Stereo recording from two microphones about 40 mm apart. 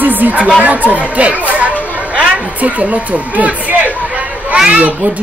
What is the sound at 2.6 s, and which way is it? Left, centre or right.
A woman's voice, right.